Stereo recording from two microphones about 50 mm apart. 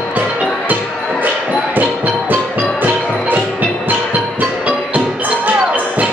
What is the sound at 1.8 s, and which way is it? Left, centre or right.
Music, right.